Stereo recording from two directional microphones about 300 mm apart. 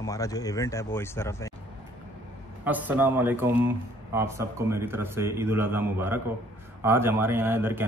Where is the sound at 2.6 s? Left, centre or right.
Centre.